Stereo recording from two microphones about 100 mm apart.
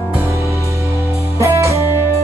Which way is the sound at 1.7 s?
30° left (ahead or behind).